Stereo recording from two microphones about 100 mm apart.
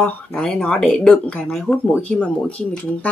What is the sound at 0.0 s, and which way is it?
Speech, 10° left (ahead or behind).